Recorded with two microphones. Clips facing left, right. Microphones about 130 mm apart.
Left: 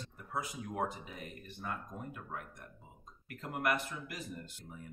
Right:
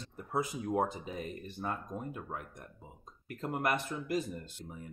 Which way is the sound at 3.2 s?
25° right (ahead or behind).